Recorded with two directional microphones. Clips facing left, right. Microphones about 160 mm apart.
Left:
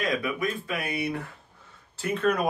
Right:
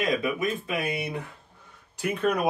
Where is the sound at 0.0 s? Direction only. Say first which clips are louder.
Right 2 dB; 20° right (ahead or behind).